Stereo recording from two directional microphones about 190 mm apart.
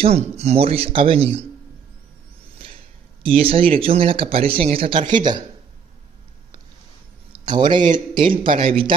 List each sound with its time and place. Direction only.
0.0 s speech: 35° right (ahead or behind)
2.6 s speech: 30° right (ahead or behind)
7.3 s speech: 25° right (ahead or behind)